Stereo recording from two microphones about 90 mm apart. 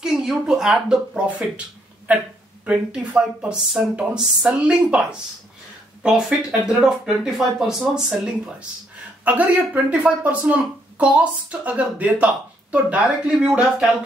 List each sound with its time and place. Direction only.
0.0 s speech: 5° right (ahead or behind)
6.0 s speech: 10° right (ahead or behind)